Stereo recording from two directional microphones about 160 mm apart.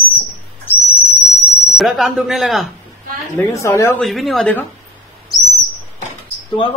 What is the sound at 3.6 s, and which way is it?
Speech, 20° left (ahead or behind).